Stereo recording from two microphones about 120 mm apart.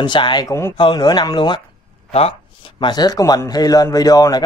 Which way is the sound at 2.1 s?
55° left (ahead or behind).